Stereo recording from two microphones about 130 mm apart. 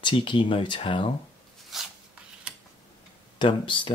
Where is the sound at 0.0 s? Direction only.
40° left (ahead or behind).